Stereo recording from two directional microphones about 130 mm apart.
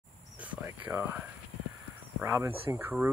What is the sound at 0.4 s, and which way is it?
Speech, 10° right (ahead or behind).